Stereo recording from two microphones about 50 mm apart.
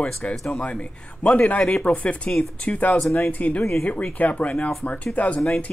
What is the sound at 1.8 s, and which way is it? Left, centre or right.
Speech, left.